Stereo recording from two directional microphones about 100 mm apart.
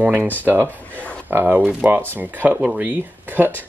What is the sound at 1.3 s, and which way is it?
Speech, 20° right (ahead or behind).